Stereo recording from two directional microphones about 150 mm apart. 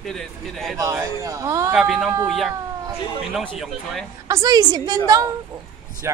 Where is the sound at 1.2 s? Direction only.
20° right (ahead or behind).